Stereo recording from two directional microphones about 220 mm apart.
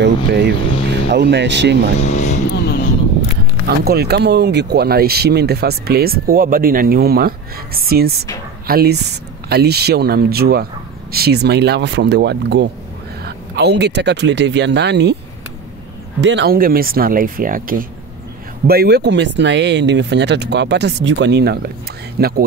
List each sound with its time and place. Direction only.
0.0 s speech: 50° right (ahead or behind)
2.0 s speech: 30° left (ahead or behind)
3.6 s speech: 45° right (ahead or behind)
16.2 s speech: 55° right (ahead or behind)